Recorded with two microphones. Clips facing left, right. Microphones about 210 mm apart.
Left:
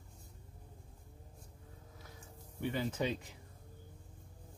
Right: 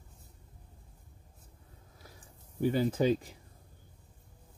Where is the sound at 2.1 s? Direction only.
35° right (ahead or behind).